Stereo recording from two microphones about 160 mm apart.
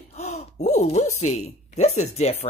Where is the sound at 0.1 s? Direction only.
45° left (ahead or behind).